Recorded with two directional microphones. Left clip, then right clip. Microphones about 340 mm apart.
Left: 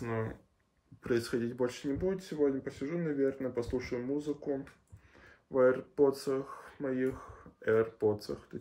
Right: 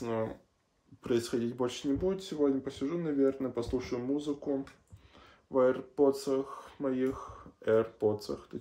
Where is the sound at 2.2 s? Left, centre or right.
Centre.